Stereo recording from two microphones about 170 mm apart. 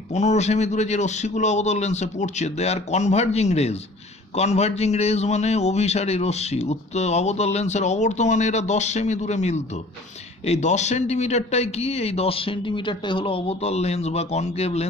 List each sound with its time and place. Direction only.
0.1 s a man's voice: 45° left (ahead or behind)